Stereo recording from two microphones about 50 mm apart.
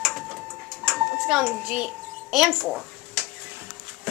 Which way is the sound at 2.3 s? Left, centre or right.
Centre.